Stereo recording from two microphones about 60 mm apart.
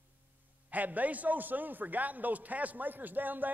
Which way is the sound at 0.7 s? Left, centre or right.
Right.